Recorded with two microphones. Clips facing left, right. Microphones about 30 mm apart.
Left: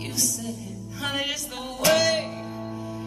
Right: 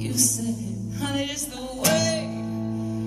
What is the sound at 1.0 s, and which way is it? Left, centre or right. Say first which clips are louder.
Music: left 1 dB; centre.